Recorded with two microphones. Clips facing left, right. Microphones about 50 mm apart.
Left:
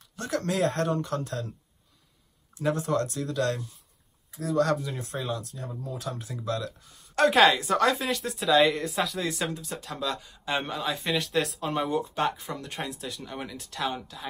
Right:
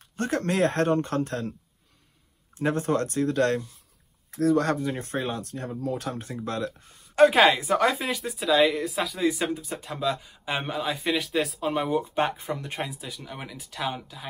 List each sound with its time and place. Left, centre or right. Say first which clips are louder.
0.1 s speech: right 3 dB; right
2.6 s speech: right 2 dB; right
4.3 s speech: right 9 dB; right
4.6 s speech: right 1 dB; right
7.2 s speech: right 2 dB; centre
12.4 s speech: right 4 dB; centre